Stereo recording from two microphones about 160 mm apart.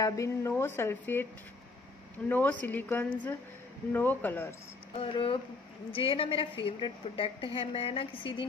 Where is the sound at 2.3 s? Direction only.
10° left (ahead or behind).